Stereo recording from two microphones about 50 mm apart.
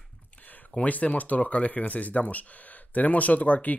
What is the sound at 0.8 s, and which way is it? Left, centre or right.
Speech, left.